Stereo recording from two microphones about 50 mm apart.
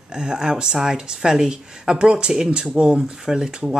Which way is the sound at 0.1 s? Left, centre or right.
Centre.